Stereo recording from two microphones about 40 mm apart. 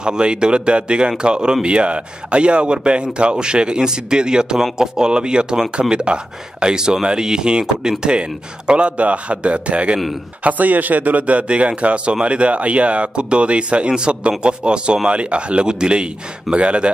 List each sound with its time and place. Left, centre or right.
0.0 s a man's voice: right
10.4 s a man's voice: right